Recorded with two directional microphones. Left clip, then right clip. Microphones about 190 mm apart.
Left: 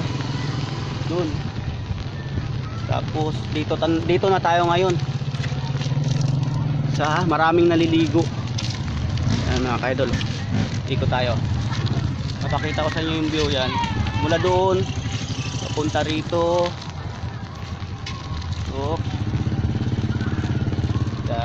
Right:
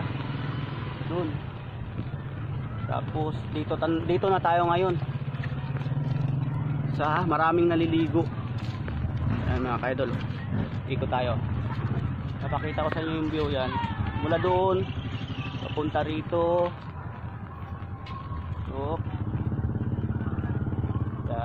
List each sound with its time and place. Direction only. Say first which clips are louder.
2.9 s speech: left 6 dB; centre (ahead or behind)
7.0 s speech: left 5 dB; 10° left (ahead or behind)
9.5 s speech: left 5 dB; 10° left (ahead or behind)
10.9 s speech: left 5 dB; centre (ahead or behind)
12.5 s speech: left 5 dB; 5° right (ahead or behind)
15.9 s speech: left 5 dB; 10° right (ahead or behind)